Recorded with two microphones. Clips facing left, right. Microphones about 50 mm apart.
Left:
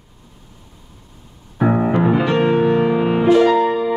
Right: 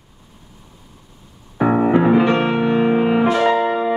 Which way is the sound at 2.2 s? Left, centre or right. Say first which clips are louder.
Left 1 dB; right.